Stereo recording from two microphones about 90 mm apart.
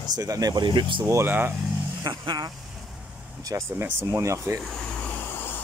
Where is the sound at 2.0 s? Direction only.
45° right (ahead or behind).